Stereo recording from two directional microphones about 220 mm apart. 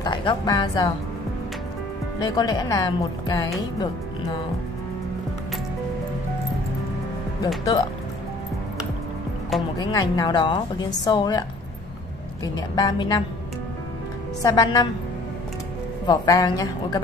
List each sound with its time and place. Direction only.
0.0 s a woman's voice: 20° left (ahead or behind)
2.1 s speech: 20° left (ahead or behind)
9.8 s a woman's voice: 15° left (ahead or behind)
12.5 s speech: 15° left (ahead or behind)
14.4 s a woman's voice: 20° left (ahead or behind)
16.1 s speech: 15° left (ahead or behind)